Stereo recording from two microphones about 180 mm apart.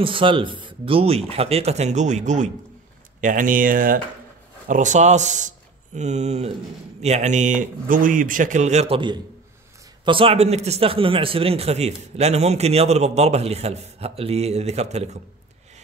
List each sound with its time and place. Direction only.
0.0 s a man's voice: 30° right (ahead or behind)